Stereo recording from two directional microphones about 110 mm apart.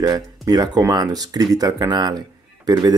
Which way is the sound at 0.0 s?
35° right (ahead or behind).